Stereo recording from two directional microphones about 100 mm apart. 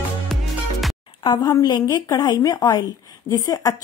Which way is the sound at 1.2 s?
50° left (ahead or behind).